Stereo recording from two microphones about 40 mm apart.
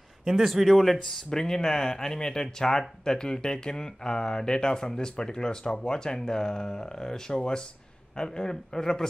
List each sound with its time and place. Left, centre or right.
0.2 s speech: centre
1.1 s speech: centre